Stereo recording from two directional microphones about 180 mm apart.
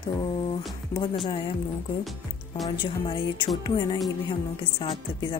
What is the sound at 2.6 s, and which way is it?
Speech, 25° left (ahead or behind).